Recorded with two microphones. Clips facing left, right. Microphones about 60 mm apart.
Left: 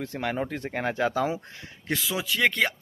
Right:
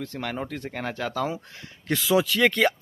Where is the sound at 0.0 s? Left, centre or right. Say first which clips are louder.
Left 2 dB; centre.